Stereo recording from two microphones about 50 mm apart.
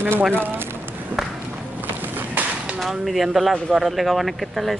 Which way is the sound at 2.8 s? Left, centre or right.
Centre.